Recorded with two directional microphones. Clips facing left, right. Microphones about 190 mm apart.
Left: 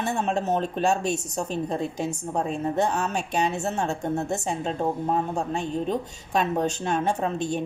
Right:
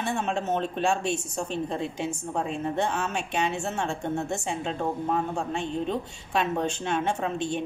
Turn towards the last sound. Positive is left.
turn(degrees=40)  # may be behind; listen again after turning